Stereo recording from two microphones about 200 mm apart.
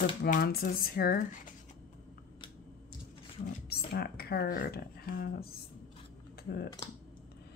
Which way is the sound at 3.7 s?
50° left (ahead or behind).